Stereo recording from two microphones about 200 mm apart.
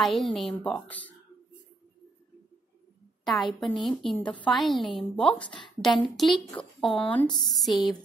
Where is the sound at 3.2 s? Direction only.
Centre (ahead or behind).